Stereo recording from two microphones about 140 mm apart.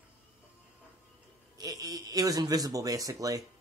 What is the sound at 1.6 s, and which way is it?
Speech, 25° right (ahead or behind).